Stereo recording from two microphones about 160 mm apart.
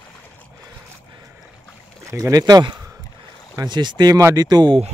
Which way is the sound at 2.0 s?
20° right (ahead or behind).